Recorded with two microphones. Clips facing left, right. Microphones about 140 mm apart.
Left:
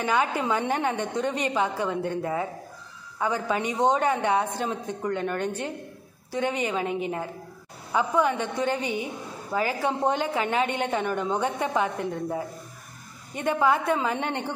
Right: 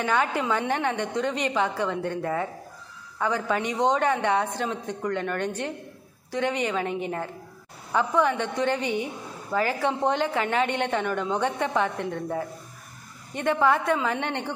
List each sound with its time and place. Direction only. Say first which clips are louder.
0.0 s a woman's voice: even; 20° left (ahead or behind)
7.9 s a woman's voice: even; 15° left (ahead or behind)
13.9 s a woman's voice: even; 30° left (ahead or behind)